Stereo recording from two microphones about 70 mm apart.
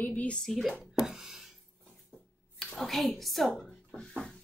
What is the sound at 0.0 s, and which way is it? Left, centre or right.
Speech, left.